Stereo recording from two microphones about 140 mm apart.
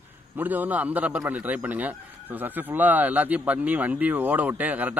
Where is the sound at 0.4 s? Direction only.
10° right (ahead or behind).